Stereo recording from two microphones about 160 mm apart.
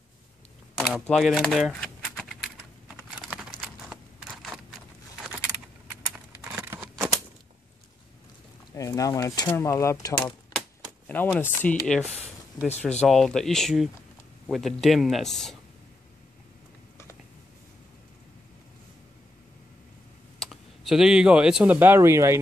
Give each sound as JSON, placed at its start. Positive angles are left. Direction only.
{"t": 1.0, "sound": "typing", "side_deg": 5}
{"t": 3.6, "sound": "a sound", "side_deg": -5}
{"t": 5.2, "sound": "keys jangling", "side_deg": -10}
{"t": 8.7, "sound": "speech", "side_deg": 20}
{"t": 11.1, "sound": "speech", "side_deg": 10}
{"t": 20.3, "sound": "speech", "side_deg": 0}